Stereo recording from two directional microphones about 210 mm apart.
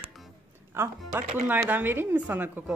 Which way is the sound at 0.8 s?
10° right (ahead or behind).